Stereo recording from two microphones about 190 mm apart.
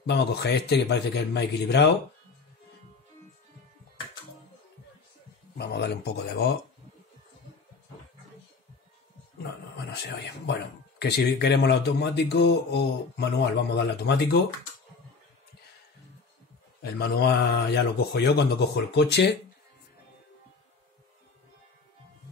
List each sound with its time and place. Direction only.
0.0 s speech: 60° left (ahead or behind)
5.6 s speech: 60° left (ahead or behind)
9.8 s speech: 65° left (ahead or behind)
17.0 s speech: 55° left (ahead or behind)